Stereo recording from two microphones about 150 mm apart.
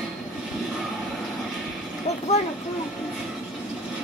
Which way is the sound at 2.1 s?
45° left (ahead or behind).